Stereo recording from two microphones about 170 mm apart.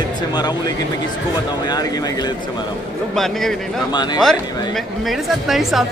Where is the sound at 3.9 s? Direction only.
25° left (ahead or behind).